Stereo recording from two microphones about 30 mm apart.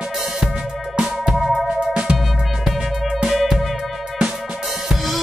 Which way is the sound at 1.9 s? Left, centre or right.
Right.